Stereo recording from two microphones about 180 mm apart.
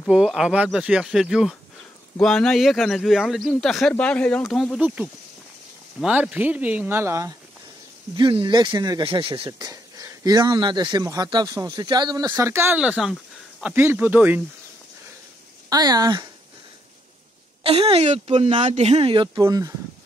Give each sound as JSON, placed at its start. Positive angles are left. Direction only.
{"t": 0.0, "sound": "speech", "side_deg": 0}
{"t": 4.8, "sound": "speech", "side_deg": -10}
{"t": 8.2, "sound": "speech", "side_deg": -25}
{"t": 15.7, "sound": "speech", "side_deg": -20}
{"t": 17.6, "sound": "speech", "side_deg": -30}